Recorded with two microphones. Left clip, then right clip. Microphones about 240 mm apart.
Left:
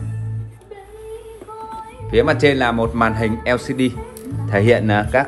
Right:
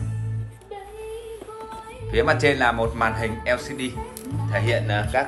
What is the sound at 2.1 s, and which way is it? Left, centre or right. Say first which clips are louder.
A man's voice: left 5 dB; centre.